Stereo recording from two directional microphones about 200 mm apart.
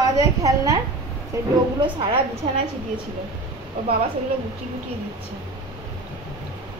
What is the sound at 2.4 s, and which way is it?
Speech, 25° right (ahead or behind).